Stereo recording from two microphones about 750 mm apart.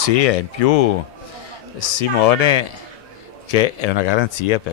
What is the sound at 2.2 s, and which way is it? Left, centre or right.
Speech, left.